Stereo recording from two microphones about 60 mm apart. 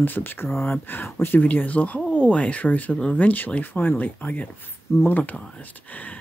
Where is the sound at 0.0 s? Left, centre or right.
Left.